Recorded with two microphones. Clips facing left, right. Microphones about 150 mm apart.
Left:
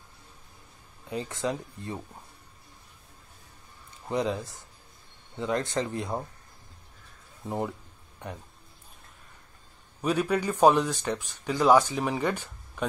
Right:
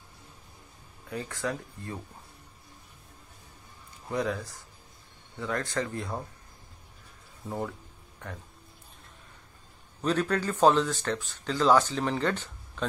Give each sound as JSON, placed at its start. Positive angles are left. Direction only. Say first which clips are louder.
{"t": 1.0, "sound": "speech", "louder": "left 2 dB", "side_deg": 20}
{"t": 4.1, "sound": "speech", "louder": "left 2 dB", "side_deg": 20}
{"t": 7.4, "sound": "speech", "louder": "left 3 dB", "side_deg": 20}
{"t": 10.0, "sound": "speech", "louder": "left 1 dB", "side_deg": 10}